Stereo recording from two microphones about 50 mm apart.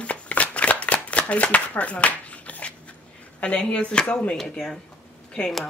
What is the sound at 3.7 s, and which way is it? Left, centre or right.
Speech, left.